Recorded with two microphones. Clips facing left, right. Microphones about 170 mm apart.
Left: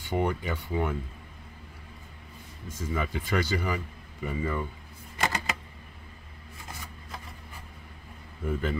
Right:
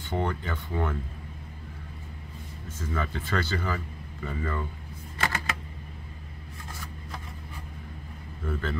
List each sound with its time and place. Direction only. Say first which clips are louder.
0.0 s speech: left 2 dB; 10° left (ahead or behind)
2.8 s speech: left 1 dB; 15° left (ahead or behind)
5.2 s typewriter: left 1 dB; 15° left (ahead or behind)
8.5 s speech: left 2 dB; 15° left (ahead or behind)